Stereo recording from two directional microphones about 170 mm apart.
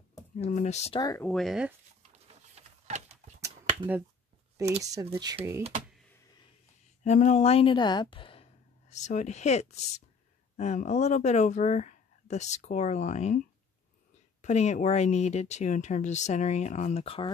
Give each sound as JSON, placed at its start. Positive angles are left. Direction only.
{"t": 0.4, "sound": "speech", "side_deg": 40}
{"t": 1.0, "sound": "speech", "side_deg": 15}
{"t": 1.3, "sound": "speech", "side_deg": 0}
{"t": 2.5, "sound": "a sound", "side_deg": -40}
{"t": 3.3, "sound": "a sound", "side_deg": -15}
{"t": 4.6, "sound": "speech", "side_deg": -20}
{"t": 7.0, "sound": "speech", "side_deg": 45}
{"t": 14.4, "sound": "speech", "side_deg": 40}